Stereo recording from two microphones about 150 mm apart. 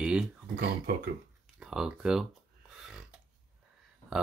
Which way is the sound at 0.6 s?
70° right (ahead or behind).